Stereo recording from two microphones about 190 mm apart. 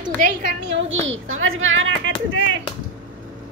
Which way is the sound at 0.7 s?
85° right.